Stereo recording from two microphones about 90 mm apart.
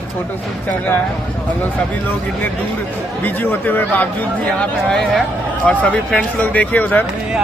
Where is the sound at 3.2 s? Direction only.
20° left (ahead or behind).